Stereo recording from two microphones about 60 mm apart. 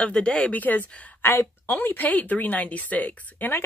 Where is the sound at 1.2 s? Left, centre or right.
Left.